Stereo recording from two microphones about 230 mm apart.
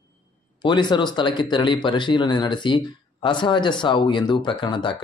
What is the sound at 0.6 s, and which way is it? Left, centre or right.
Speech, centre.